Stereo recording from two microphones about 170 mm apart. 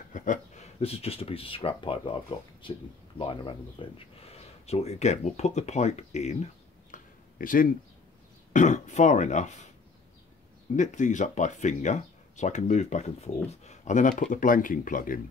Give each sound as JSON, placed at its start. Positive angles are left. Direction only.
{"t": 0.1, "sound": "speech", "side_deg": 50}
{"t": 10.8, "sound": "speech", "side_deg": 45}